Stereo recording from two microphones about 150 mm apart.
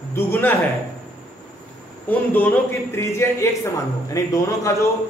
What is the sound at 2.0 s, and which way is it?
A man's voice, 10° left (ahead or behind).